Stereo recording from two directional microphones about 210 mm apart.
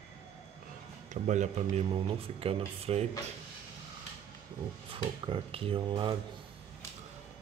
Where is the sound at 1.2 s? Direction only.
35° right (ahead or behind).